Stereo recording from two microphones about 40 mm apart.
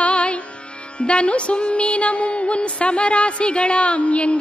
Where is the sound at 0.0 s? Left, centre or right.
Left.